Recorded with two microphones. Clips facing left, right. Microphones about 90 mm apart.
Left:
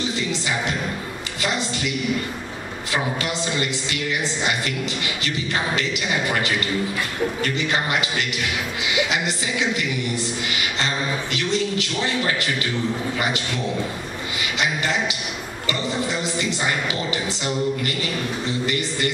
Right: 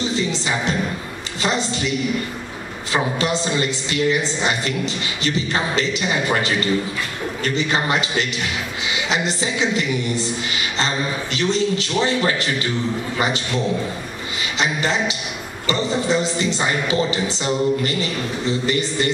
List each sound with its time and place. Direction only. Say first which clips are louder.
0.1 s a woman's voice: right 3 dB; 30° right (ahead or behind)
14.6 s a woman's voice: right 3 dB; 30° right (ahead or behind)